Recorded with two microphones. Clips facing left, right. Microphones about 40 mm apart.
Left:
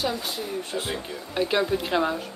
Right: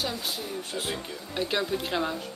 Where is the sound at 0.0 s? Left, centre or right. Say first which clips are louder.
Left 4 dB; centre.